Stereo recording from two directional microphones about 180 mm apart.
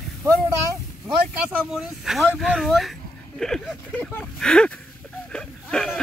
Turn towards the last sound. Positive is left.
turn(degrees=5)  # may be behind; listen again after turning